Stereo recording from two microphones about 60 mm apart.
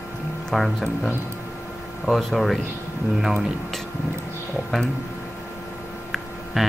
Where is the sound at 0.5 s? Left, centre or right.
Centre.